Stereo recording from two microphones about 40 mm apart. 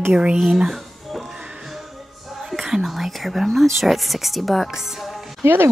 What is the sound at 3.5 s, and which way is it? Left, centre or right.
Speech, centre.